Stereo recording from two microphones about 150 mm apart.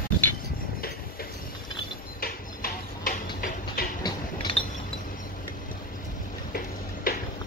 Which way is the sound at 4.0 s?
35° left (ahead or behind).